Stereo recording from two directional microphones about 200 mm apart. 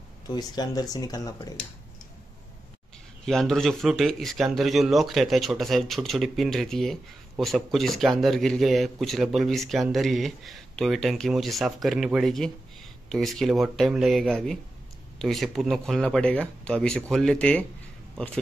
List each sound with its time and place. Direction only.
0.3 s speech: 20° left (ahead or behind)
3.3 s speech: centre (ahead or behind)